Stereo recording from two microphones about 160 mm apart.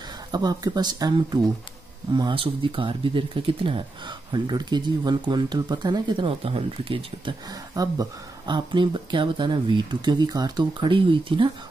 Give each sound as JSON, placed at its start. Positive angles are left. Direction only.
{"t": 0.3, "sound": "speech", "side_deg": -25}